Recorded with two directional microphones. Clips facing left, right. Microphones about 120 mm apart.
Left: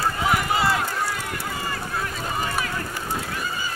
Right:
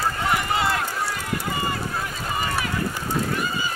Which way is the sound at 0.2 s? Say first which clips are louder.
Left 2 dB; 5° left (ahead or behind).